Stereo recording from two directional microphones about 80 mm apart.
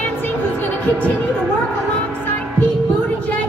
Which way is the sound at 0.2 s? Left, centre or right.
Left.